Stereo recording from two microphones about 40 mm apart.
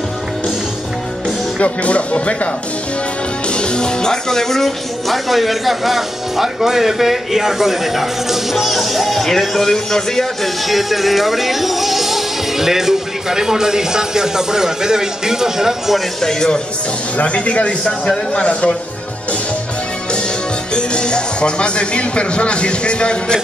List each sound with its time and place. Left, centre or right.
1.6 s speech: left; by 10.5 s centre
10.7 s speech: centre
16.2 s speech: centre
17.2 s speech: left
18.0 s speech: centre
20.7 s speech: left